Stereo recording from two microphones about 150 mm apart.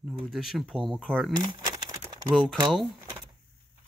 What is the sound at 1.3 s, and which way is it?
Crumpling, 25° right (ahead or behind).